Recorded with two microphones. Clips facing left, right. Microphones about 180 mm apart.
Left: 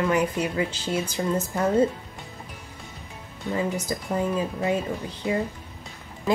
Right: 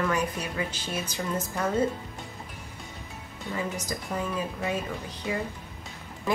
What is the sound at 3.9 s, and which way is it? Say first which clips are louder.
Speech: left 5 dB; 25° left (ahead or behind).